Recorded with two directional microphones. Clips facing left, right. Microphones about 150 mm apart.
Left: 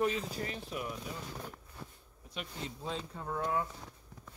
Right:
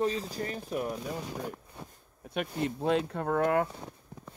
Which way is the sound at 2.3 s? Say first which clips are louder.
Right 11 dB; 60° right (ahead or behind).